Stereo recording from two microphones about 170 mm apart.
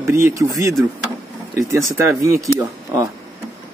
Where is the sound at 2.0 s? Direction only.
15° right (ahead or behind).